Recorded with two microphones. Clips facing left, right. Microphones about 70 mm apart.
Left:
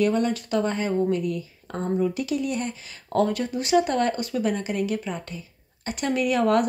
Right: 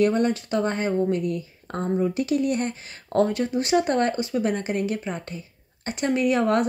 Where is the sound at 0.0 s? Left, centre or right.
Right.